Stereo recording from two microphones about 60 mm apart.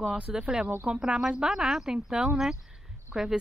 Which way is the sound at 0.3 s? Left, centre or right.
Centre.